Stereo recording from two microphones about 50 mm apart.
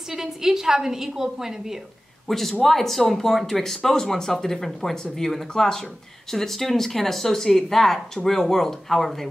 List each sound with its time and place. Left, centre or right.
0.1 s a woman's voice: centre
2.2 s a man's voice: centre